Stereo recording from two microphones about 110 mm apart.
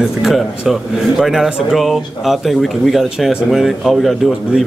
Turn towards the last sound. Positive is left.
turn(degrees=0)  # may be behind; listen again after turning